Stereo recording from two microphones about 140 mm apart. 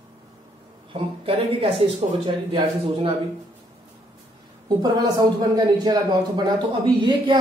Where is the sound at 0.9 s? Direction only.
40° right (ahead or behind).